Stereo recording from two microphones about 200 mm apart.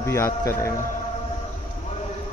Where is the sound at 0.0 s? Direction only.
15° left (ahead or behind).